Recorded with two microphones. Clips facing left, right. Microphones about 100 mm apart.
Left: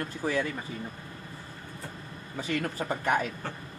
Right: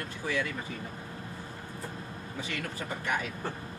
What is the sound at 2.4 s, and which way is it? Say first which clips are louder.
Speech: left 8 dB; 40° left (ahead or behind).